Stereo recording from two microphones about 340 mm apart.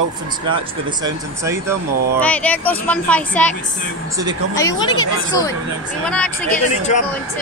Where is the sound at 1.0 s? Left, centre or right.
Centre.